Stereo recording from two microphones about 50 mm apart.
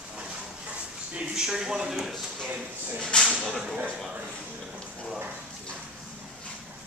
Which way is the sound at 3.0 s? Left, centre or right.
Centre.